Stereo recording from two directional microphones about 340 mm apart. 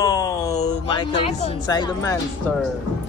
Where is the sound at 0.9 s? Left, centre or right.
Centre.